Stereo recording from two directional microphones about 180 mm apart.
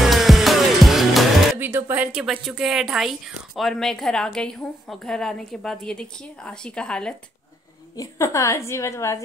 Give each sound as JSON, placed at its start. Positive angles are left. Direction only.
{"t": 0.0, "sound": "music", "side_deg": 0}
{"t": 1.6, "sound": "speech", "side_deg": -10}
{"t": 7.9, "sound": "a woman's voice", "side_deg": 20}